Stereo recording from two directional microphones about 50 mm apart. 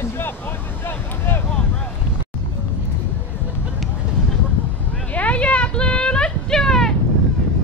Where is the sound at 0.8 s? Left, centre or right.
Left.